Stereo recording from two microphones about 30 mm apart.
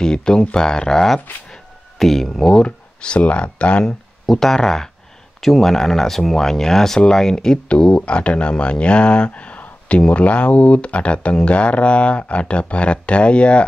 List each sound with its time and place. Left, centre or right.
0.0 s speech: left
1.3 s speech: left
2.0 s speech: centre
2.5 s speech: left
3.2 s speech: left
4.3 s speech: centre
7.6 s speech: left